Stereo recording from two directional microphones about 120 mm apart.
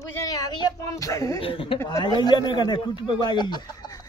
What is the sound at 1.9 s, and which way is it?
A man's voice, 35° left (ahead or behind).